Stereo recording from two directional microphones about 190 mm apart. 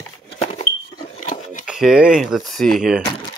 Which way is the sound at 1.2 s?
40° left (ahead or behind).